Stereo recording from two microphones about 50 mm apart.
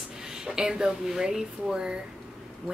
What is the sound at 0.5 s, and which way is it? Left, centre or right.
Speech, centre.